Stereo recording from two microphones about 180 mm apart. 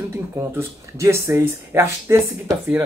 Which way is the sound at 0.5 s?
15° right (ahead or behind).